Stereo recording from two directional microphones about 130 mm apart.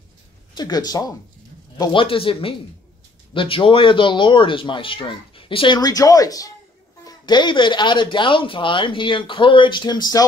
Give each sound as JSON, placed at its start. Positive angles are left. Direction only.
{"t": 0.6, "sound": "speech", "side_deg": 30}
{"t": 1.8, "sound": "a man's voice", "side_deg": 40}